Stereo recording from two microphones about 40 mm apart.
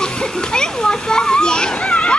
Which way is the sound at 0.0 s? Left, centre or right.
Centre.